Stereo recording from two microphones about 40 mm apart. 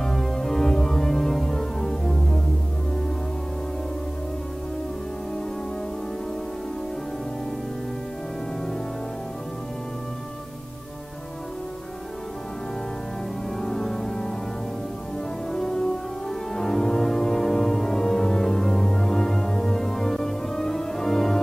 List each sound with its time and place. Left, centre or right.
0.0 s music: centre
13.6 s organ: centre
15.5 s music: centre